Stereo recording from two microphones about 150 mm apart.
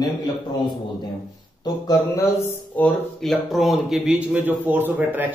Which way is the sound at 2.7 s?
5° left (ahead or behind).